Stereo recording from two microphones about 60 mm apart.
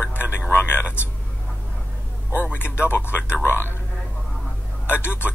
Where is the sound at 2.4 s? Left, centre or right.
Left.